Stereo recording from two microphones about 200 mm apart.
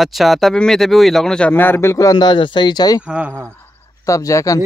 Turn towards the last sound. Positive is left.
turn(degrees=15)  # may be behind; listen again after turning